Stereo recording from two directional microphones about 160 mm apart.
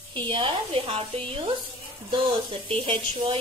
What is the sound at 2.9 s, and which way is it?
Speech, 30° right (ahead or behind).